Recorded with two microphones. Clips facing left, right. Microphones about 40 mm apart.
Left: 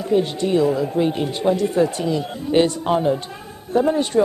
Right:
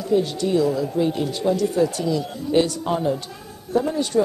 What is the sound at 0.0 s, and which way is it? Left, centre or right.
Speech, left.